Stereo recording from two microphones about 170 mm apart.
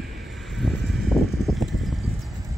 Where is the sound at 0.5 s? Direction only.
Centre (ahead or behind).